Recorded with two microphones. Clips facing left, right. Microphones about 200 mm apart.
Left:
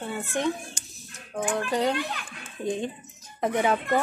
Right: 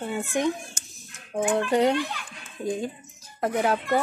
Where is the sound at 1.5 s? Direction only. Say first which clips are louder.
Right 5 dB; 25° right (ahead or behind).